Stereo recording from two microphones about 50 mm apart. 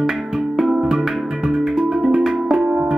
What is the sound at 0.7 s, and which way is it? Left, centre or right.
Music, centre.